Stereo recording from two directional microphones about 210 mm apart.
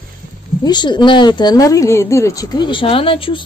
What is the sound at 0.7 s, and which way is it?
Speech, 20° left (ahead or behind).